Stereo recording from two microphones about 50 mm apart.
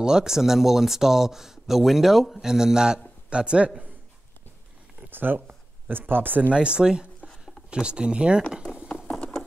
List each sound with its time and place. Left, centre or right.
0.0 s speech: centre
5.1 s speech: right
6.5 s speech: centre